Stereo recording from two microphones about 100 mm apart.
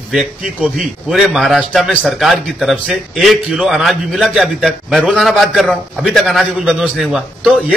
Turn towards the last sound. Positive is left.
turn(degrees=-5)  # may be behind; listen again after turning